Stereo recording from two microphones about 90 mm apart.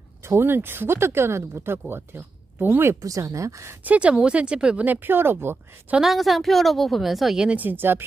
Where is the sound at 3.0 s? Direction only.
35° right (ahead or behind).